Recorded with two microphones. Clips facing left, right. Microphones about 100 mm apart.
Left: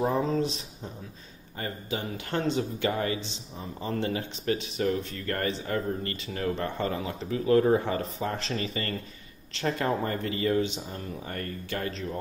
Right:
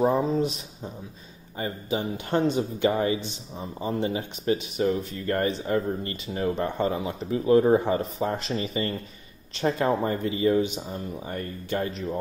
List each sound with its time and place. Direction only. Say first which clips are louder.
0.2 s speech: right 2 dB; 10° right (ahead or behind)